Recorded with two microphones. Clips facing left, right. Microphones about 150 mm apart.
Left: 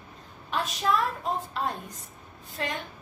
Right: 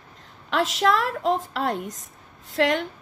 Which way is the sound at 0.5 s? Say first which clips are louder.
Right 5 dB; 90° right.